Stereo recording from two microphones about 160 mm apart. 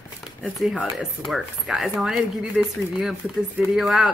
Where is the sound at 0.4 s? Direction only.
Centre (ahead or behind).